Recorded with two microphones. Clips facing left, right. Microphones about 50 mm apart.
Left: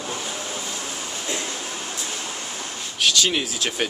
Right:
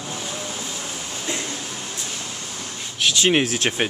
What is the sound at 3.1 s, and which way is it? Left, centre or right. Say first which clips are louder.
Speech: right 7 dB; right.